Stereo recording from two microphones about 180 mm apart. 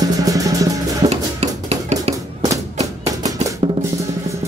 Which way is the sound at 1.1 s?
35° right (ahead or behind).